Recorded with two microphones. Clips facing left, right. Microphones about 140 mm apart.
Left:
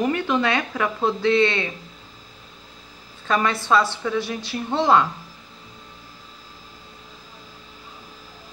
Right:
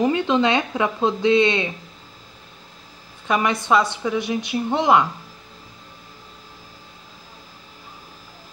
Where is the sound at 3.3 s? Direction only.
15° right (ahead or behind).